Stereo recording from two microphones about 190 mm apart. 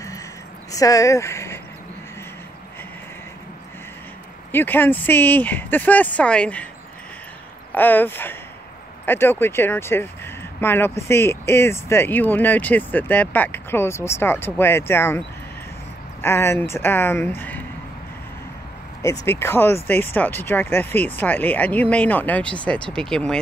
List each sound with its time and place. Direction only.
0.7 s speech: 15° left (ahead or behind)
4.5 s speech: 10° left (ahead or behind)
7.7 s speech: 10° left (ahead or behind)
19.2 s speech: 15° left (ahead or behind)